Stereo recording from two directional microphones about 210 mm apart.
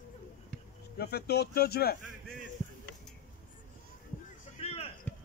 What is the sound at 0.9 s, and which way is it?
Speech, 50° left (ahead or behind).